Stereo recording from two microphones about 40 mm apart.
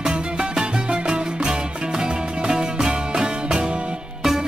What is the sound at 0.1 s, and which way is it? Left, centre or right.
Music, right.